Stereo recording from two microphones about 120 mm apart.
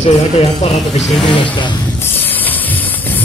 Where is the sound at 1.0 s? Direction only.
Centre (ahead or behind).